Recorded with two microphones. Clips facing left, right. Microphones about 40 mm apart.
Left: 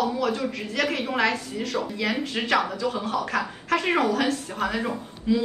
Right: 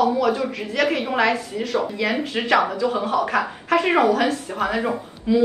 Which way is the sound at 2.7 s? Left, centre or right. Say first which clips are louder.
Right 5 dB; centre.